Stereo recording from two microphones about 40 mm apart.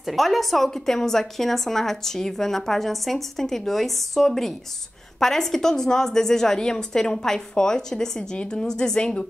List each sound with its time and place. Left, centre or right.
0.0 s a woman's voice: centre; by 9.2 s left